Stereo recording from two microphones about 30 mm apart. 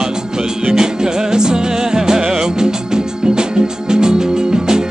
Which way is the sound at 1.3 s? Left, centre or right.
Right.